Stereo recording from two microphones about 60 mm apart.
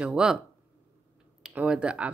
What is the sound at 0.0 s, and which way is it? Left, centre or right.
Speech, centre.